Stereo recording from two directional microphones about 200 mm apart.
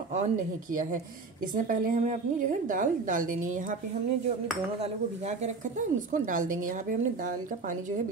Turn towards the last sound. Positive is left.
turn(degrees=-40)  # may be behind; listen again after turning